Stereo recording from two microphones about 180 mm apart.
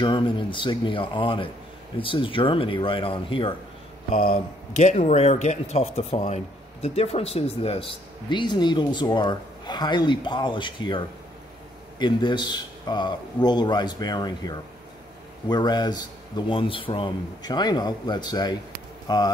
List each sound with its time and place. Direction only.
0.0 s speech: 25° left (ahead or behind)
4.1 s speech: 55° left (ahead or behind)
4.7 s speech: 40° left (ahead or behind); by 19.3 s 20° left (ahead or behind)